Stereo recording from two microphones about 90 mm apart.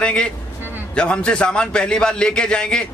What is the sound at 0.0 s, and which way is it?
A man's voice, 10° left (ahead or behind).